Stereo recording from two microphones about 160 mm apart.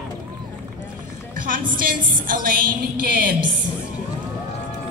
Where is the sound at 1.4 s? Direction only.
60° right (ahead or behind).